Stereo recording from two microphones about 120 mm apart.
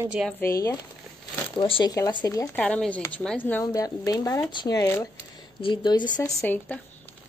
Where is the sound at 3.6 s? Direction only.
30° left (ahead or behind).